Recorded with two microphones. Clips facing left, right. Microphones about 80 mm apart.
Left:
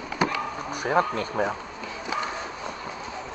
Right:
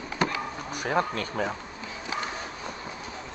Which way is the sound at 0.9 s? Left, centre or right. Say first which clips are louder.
Left 4 dB; centre.